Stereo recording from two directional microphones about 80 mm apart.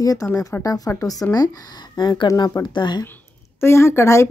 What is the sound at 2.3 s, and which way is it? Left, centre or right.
Speech, left.